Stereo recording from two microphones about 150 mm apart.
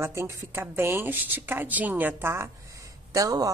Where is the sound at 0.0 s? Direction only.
20° right (ahead or behind).